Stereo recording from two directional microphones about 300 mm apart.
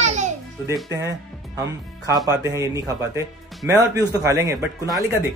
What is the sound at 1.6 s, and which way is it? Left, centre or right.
A man's voice, centre.